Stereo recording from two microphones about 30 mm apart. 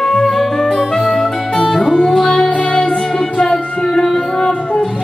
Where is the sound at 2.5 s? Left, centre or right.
Left.